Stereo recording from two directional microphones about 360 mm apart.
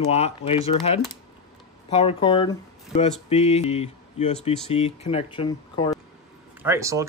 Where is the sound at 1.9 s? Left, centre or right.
Centre.